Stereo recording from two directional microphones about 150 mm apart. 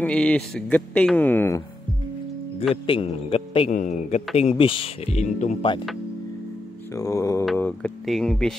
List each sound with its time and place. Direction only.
0.0 s speech: 10° left (ahead or behind)
2.7 s a man's voice: 40° left (ahead or behind)
3.7 s speech: 55° left (ahead or behind)
4.4 s speech: 40° left (ahead or behind)
6.9 s mantra: 20° left (ahead or behind)
7.5 s a sound: 10° left (ahead or behind)
8.0 s speech: centre (ahead or behind)